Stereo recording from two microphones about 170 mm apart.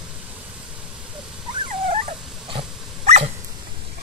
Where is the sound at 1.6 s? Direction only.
35° right (ahead or behind).